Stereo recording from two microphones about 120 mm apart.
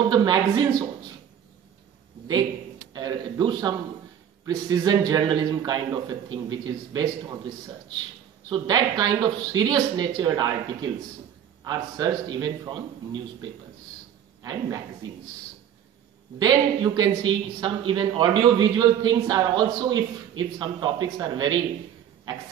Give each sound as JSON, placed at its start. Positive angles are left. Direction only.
{"t": 0.1, "sound": "speech", "side_deg": -40}
{"t": 2.9, "sound": "speech", "side_deg": -35}
{"t": 16.3, "sound": "speech", "side_deg": -35}